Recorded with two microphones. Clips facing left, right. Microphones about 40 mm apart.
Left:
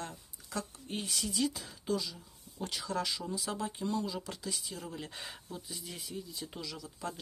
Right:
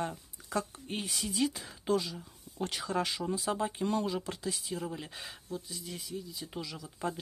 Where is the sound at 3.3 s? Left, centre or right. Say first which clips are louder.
Right 4 dB; right.